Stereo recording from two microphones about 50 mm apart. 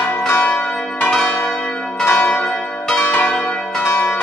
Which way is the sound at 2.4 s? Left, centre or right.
Centre.